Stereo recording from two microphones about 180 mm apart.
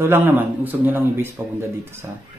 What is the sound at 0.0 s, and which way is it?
A man's voice, 10° right (ahead or behind).